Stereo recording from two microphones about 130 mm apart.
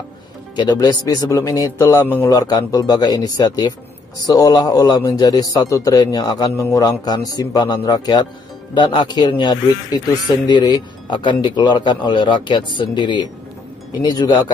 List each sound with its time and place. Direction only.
0.6 s a man's voice: 30° left (ahead or behind)